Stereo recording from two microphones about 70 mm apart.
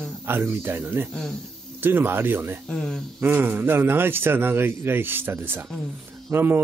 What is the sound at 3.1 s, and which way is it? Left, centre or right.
A man's voice, right.